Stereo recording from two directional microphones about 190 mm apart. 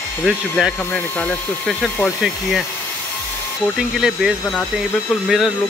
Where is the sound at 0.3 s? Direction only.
Centre (ahead or behind).